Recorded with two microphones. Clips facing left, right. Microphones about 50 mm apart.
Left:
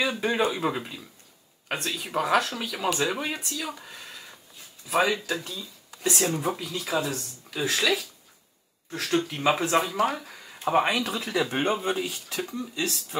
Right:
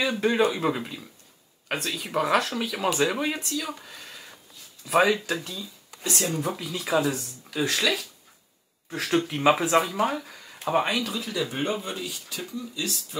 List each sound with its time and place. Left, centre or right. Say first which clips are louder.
0.0 s speech: right 2 dB; centre
4.8 s speech: right 3 dB; centre
6.4 s speech: left 1 dB; centre
8.9 s speech: right 1 dB; centre
11.1 s speech: left 2 dB; left